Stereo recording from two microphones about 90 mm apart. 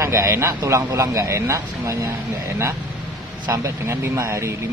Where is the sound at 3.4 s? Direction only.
35° right (ahead or behind).